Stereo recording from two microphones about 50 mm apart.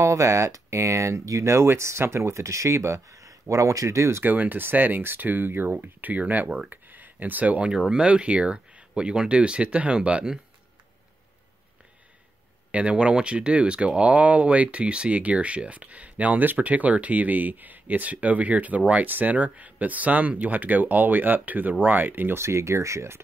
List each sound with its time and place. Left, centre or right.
0.0 s speech: right
4.2 s speech: right
7.9 s speech: right
12.7 s speech: right
22.4 s speech: right